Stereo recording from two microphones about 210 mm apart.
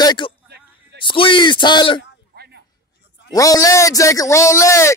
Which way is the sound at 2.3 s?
50° right (ahead or behind).